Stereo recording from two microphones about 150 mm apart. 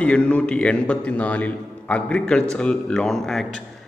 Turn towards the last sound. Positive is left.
turn(degrees=5)  # may be behind; listen again after turning